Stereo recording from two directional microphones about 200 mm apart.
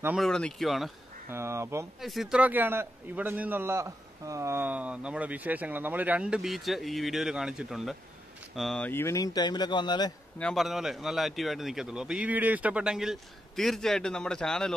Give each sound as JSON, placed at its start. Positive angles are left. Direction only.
{"t": 0.0, "sound": "a man's voice", "side_deg": 0}
{"t": 1.3, "sound": "a man's voice", "side_deg": -15}
{"t": 2.0, "sound": "a man's voice", "side_deg": 0}
{"t": 10.4, "sound": "a man's voice", "side_deg": 0}